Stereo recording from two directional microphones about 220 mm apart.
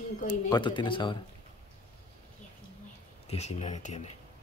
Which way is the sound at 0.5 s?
20° left (ahead or behind).